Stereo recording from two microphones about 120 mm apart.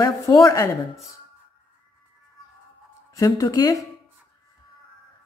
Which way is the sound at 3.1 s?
30° left (ahead or behind).